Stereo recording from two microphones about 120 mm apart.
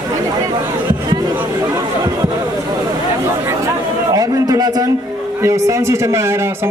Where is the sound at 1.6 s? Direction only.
30° right (ahead or behind).